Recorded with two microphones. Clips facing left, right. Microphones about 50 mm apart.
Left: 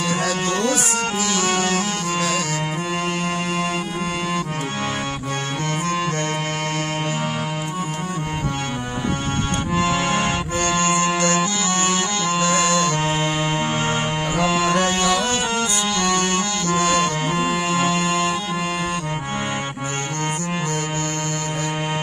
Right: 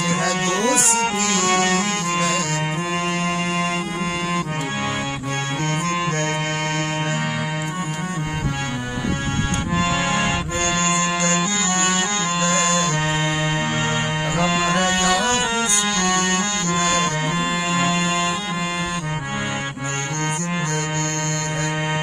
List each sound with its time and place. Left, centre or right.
0.1 s music: right
9.8 s accordion: centre
10.6 s accordion: centre
11.6 s music: right
13.2 s music: centre
14.3 s music: centre
14.9 s a sound: right
15.6 s music: right
17.4 s music: centre
17.9 s music: centre